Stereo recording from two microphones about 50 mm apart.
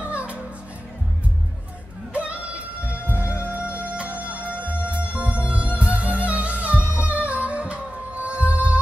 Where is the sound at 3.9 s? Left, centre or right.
Right.